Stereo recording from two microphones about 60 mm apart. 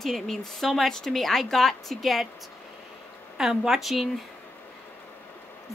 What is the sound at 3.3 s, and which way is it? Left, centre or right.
Speech, centre.